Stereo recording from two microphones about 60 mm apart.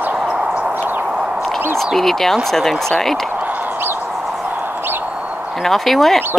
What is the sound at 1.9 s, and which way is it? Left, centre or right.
Speech, centre.